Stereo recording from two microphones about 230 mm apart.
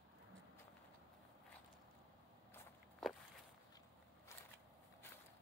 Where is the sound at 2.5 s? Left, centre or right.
Centre.